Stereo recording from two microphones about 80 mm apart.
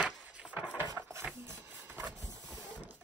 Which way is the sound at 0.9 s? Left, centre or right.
Right.